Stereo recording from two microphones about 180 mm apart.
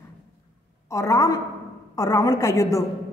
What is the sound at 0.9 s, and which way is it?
A woman's voice, 15° left (ahead or behind).